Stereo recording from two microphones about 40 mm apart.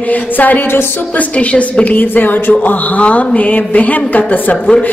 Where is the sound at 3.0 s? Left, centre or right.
Left.